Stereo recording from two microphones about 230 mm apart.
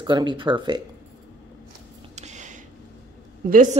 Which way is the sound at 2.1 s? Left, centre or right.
Right.